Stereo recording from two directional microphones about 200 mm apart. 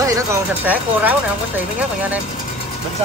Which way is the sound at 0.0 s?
15° right (ahead or behind).